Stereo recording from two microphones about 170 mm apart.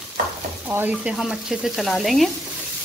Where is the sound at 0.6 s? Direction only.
10° right (ahead or behind).